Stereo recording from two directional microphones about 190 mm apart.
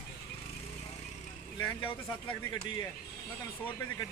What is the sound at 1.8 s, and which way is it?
Speech, 25° left (ahead or behind).